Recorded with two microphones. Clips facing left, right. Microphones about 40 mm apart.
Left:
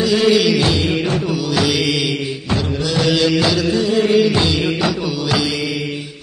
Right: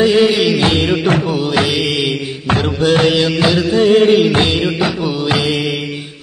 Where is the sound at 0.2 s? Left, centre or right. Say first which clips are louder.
Right 1 dB; centre.